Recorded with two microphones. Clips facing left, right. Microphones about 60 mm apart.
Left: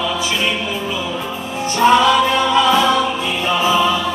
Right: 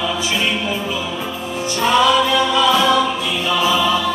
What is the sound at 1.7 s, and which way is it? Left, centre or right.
Choir, left.